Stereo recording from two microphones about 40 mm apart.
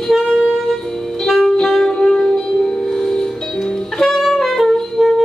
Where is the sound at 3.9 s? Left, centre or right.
Centre.